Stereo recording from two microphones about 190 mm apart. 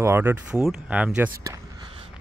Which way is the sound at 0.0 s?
15° right (ahead or behind).